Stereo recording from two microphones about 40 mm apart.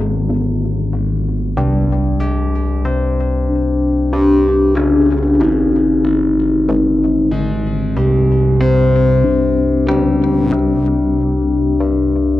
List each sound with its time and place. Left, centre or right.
3.8 s music: centre
5.7 s music: centre
6.0 s music: centre
8.5 s music: centre
9.3 s music: left
9.8 s music: centre
11.8 s music: centre